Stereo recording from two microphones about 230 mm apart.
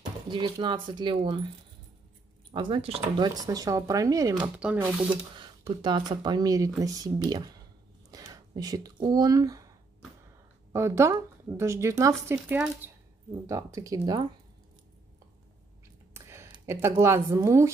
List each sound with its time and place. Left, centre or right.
0.3 s speech: right
2.5 s speech: right
5.4 s speech: right
10.7 s speech: centre
16.1 s speech: centre